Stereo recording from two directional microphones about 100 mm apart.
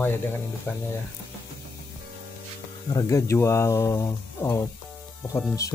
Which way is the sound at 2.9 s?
30° left (ahead or behind).